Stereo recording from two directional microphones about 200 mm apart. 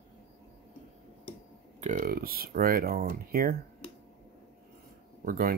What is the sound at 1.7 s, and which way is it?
Speech, 40° right (ahead or behind).